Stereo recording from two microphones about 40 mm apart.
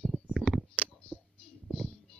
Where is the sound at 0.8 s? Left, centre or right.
Right.